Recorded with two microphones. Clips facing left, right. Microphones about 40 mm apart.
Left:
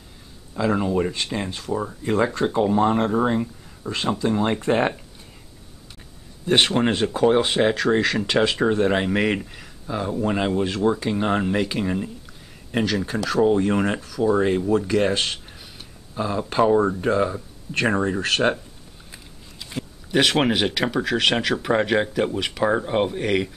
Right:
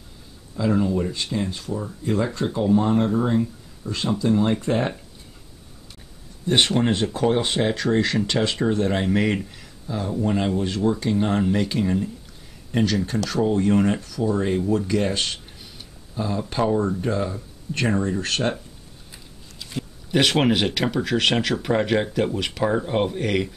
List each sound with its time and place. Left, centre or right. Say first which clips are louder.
0.6 s speech: even; left
0.9 s speech: left 1 dB; left
6.4 s speech: left 1 dB; centre
14.8 s a sound: left 2 dB; centre
16.3 s speech: left 4 dB; centre
19.1 s biting: left 1 dB; centre
20.1 s speech: even; centre